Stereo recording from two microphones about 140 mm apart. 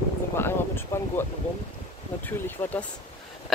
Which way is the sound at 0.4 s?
15° left (ahead or behind).